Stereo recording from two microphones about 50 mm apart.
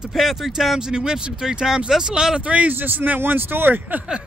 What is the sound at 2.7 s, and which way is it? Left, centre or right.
Speech, right.